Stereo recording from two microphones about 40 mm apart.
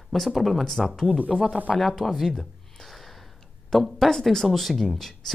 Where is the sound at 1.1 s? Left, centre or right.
Right.